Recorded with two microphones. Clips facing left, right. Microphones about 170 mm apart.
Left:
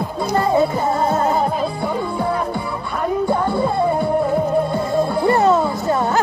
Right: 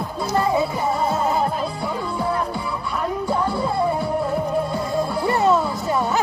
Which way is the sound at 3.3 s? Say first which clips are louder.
Left 4 dB; 20° left (ahead or behind).